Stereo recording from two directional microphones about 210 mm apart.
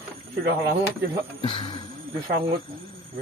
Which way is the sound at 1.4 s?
25° left (ahead or behind).